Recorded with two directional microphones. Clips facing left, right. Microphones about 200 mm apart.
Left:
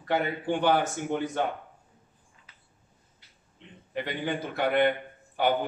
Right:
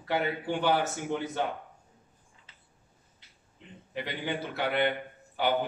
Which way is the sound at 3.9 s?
50° left (ahead or behind).